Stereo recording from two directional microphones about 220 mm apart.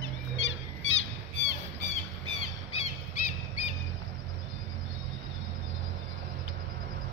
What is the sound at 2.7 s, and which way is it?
Squawk, 30° left (ahead or behind).